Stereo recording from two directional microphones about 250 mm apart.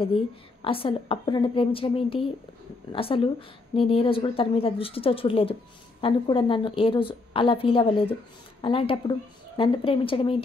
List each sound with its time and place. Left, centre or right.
0.0 s a woman's voice: left